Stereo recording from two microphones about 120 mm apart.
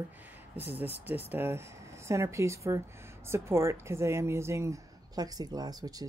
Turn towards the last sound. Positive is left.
turn(degrees=-30)  # may be behind; listen again after turning